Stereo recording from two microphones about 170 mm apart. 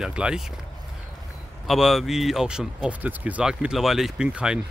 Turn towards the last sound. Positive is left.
turn(degrees=-5)  # may be behind; listen again after turning